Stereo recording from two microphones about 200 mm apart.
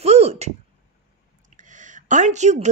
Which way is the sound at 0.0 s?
30° right (ahead or behind).